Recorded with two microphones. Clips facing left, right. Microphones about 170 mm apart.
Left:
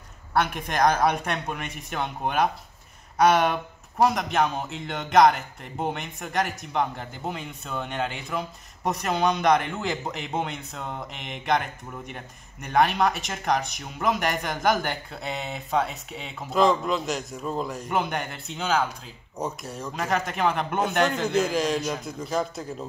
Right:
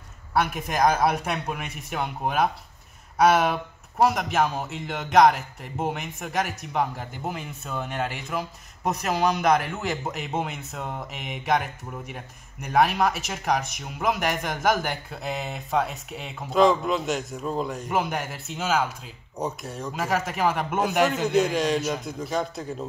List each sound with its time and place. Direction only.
0.3 s a man's voice: 5° right (ahead or behind)